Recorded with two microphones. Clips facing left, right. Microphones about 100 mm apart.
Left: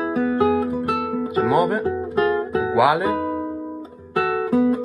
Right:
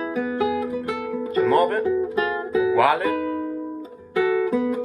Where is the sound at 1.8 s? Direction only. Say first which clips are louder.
Left 1 dB; 40° left (ahead or behind).